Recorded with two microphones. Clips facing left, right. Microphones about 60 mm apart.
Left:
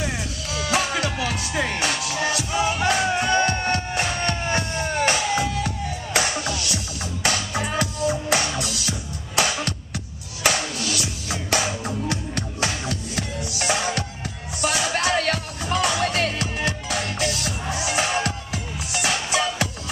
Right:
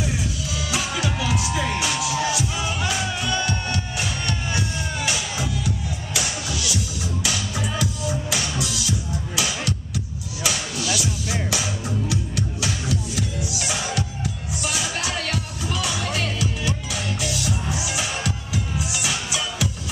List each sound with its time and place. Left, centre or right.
0.5 s music: left
2.5 s music: left